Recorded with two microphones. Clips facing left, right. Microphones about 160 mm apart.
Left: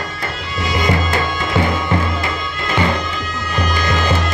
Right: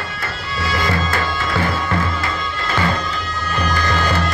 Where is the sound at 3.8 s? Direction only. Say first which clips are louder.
Left 2 dB; 15° left (ahead or behind).